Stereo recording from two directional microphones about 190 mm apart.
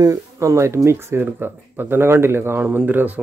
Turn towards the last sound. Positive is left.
turn(degrees=-10)  # may be behind; listen again after turning